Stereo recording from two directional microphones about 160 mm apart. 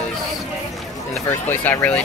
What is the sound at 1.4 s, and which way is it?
Speech, 10° left (ahead or behind).